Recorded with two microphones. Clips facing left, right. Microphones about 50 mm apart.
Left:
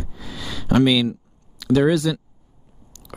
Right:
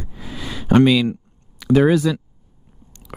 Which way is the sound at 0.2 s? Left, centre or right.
Centre.